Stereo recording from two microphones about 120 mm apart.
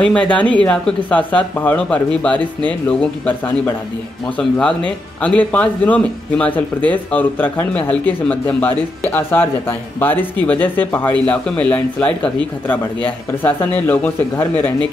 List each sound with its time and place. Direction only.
0.0 s speech: 10° left (ahead or behind)
4.4 s speech: 5° left (ahead or behind)
13.4 s speech: 15° left (ahead or behind)